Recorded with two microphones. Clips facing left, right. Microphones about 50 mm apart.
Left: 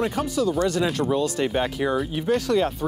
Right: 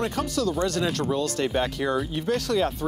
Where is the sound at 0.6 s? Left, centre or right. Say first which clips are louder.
Left 3 dB; centre.